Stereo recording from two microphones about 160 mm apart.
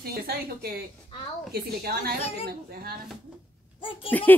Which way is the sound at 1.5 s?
75° right (ahead or behind).